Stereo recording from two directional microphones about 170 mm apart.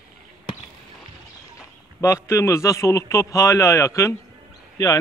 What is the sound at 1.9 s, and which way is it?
A man's voice, 15° left (ahead or behind).